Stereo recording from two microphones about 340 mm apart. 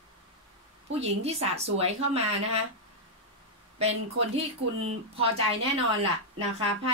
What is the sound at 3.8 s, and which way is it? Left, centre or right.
Speech, centre.